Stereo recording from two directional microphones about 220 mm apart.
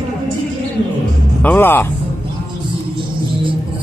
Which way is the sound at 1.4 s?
10° left (ahead or behind).